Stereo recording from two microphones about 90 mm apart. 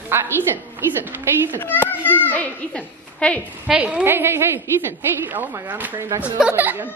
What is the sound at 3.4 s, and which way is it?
Speech, 15° right (ahead or behind).